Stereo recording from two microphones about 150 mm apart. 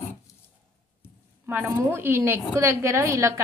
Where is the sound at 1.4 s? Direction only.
10° right (ahead or behind).